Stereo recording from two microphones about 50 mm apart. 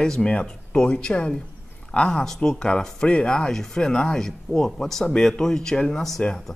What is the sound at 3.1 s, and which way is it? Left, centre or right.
Speech, left.